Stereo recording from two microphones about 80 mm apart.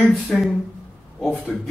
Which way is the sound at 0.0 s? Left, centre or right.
Centre.